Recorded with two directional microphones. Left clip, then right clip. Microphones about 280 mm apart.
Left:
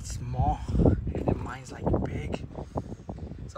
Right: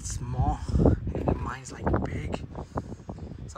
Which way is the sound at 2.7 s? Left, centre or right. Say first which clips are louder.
Even; left.